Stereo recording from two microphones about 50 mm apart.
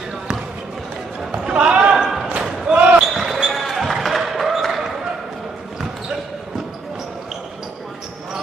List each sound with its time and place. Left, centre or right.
1.3 s basketball bounce: centre
3.0 s basketball bounce: centre